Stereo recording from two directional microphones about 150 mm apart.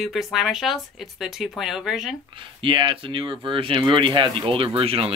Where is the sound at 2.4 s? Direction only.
35° right (ahead or behind).